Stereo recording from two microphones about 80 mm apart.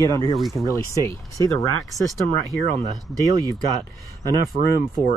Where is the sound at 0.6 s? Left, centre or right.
Left.